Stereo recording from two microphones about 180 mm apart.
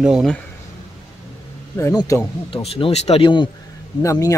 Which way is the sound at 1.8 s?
15° left (ahead or behind).